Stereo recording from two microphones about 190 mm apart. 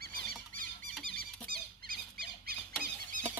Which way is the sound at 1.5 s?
50° right (ahead or behind).